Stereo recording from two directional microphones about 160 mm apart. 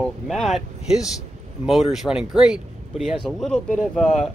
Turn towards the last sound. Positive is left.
turn(degrees=0)  # may be behind; listen again after turning